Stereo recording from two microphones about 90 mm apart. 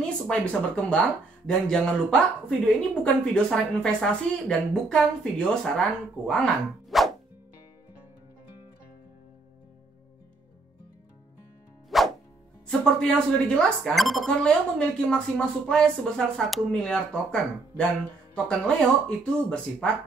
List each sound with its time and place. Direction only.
0.0 s speech: 10° left (ahead or behind)
11.9 s a sound: centre (ahead or behind)
12.6 s speech: 10° left (ahead or behind)
19.0 s speech: 10° left (ahead or behind)